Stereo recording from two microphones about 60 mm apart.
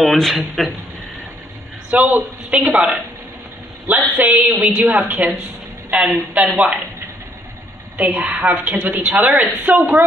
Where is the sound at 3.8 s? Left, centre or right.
Right.